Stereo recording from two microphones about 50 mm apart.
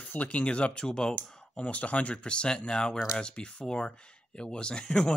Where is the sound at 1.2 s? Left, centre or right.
Left.